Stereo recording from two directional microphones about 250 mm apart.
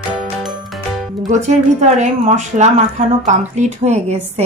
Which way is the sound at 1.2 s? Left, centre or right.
Right.